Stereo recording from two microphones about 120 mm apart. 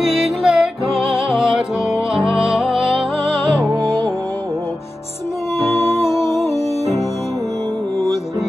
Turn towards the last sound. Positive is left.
turn(degrees=25)  # may be behind; listen again after turning